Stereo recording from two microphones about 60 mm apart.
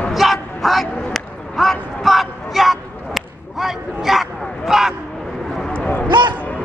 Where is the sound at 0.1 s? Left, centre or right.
Centre.